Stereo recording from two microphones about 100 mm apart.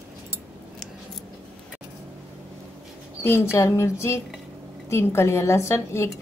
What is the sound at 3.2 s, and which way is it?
A woman's voice, 25° left (ahead or behind).